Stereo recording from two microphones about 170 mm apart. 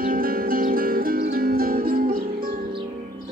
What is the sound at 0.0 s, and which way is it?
Music, 55° right (ahead or behind).